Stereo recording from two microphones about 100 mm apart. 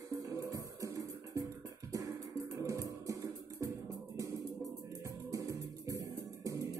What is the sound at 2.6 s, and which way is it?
Music, 35° right (ahead or behind).